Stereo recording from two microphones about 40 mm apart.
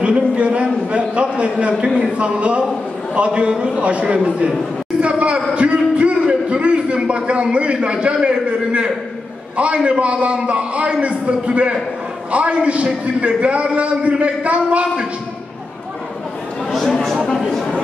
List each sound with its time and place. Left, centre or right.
0.0 s a sound: right
0.9 s a man's voice: right
5.0 s a sound: right
7.5 s a man's voice: right
9.8 s a man's voice: right
17.0 s chatter: centre